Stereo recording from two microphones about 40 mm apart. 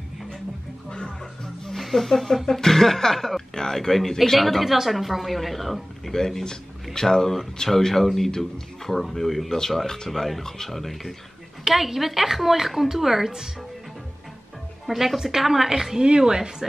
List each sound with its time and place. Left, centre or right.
0.8 s speech: left
1.4 s speech: centre
6.1 s speech: centre
14.9 s a woman's voice: centre